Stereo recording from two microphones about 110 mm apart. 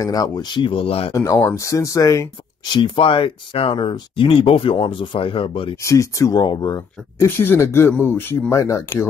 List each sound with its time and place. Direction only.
0.0 s speech: 35° left (ahead or behind); by 1.1 s 60° left (ahead or behind)
1.1 s speech: 25° left (ahead or behind)
2.7 s speech: 50° left (ahead or behind)
5.8 s speech: 30° left (ahead or behind)
7.2 s speech: 20° left (ahead or behind)